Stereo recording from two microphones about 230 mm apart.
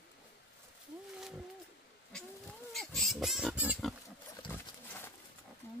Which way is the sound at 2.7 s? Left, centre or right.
Centre.